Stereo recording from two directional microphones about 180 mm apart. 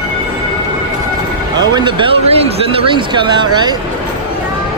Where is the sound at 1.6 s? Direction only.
25° right (ahead or behind).